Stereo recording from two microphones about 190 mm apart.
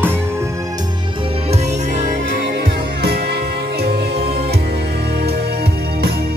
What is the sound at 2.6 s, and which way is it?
Music, 55° right (ahead or behind).